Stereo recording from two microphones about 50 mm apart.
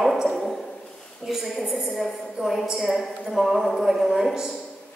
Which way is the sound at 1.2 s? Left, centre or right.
Centre.